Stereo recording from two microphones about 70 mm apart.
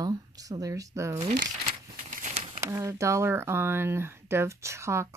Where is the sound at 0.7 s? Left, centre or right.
Right.